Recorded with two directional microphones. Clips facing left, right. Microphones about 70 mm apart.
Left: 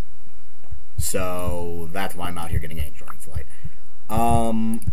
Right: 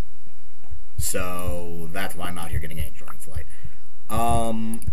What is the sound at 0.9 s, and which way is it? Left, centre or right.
Speech, centre.